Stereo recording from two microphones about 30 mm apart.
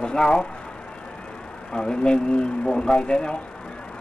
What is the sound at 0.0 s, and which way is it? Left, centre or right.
Speech, left.